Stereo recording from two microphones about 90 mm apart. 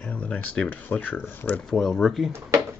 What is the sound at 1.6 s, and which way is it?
Speech, 5° left (ahead or behind).